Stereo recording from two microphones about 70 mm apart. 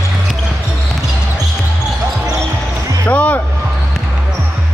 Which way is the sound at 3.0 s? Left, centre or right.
Centre.